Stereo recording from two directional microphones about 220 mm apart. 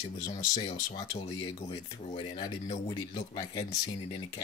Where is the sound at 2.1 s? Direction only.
25° left (ahead or behind).